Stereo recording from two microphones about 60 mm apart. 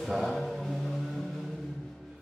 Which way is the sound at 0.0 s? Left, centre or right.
Centre.